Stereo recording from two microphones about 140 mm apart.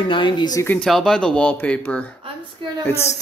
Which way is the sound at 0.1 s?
35° left (ahead or behind).